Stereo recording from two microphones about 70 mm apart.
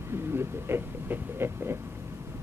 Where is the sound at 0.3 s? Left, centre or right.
Right.